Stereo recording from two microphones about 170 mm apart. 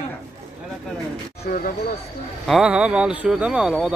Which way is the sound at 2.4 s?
5° right (ahead or behind).